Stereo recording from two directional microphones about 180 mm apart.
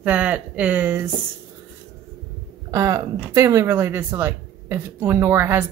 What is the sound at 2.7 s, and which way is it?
Speech, 20° right (ahead or behind).